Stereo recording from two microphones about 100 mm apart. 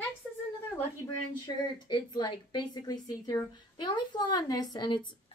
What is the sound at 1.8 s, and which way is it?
A woman's voice, 50° left (ahead or behind).